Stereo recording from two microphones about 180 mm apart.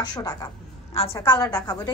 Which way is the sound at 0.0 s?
20° left (ahead or behind).